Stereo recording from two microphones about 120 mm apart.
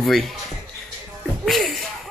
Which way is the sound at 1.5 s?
Centre (ahead or behind).